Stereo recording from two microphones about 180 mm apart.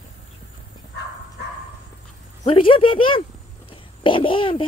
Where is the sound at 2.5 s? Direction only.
30° left (ahead or behind).